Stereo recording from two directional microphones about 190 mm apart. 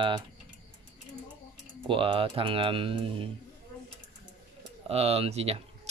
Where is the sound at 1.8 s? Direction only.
30° right (ahead or behind).